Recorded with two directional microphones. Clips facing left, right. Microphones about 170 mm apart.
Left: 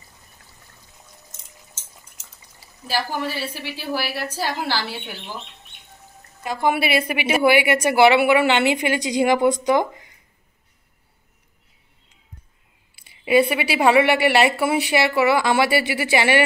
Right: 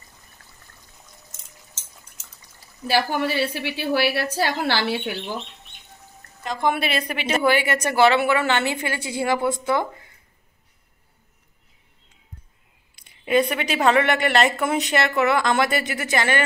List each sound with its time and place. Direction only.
2.9 s a woman's voice: 65° right (ahead or behind)
6.4 s a woman's voice: 5° left (ahead or behind)
12.9 s a woman's voice: 5° left (ahead or behind)